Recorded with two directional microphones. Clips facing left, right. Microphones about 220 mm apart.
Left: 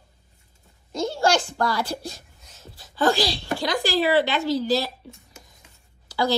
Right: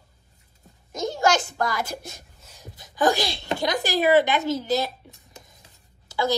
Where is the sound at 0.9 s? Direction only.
20° right (ahead or behind).